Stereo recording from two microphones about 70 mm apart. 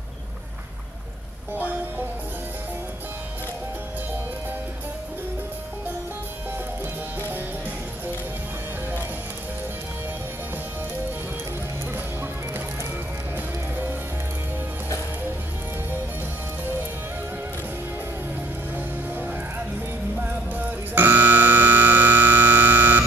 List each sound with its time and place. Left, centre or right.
1.5 s music: right
11.9 s music: right
18.8 s music: right
20.2 s buzzer: right